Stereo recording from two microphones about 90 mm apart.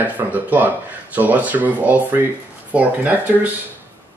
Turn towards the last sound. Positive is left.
turn(degrees=-20)  # may be behind; listen again after turning